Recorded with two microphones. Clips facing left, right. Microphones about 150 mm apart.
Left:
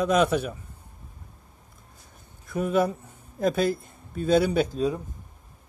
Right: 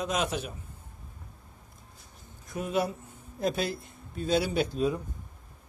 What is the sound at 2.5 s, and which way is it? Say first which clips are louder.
Speech: left 6 dB; 50° left (ahead or behind).